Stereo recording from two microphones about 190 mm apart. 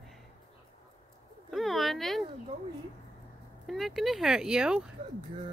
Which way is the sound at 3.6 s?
Centre (ahead or behind).